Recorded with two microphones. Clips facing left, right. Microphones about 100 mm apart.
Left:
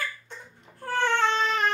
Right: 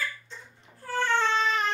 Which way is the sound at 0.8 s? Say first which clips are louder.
Left 2 dB; 65° left (ahead or behind).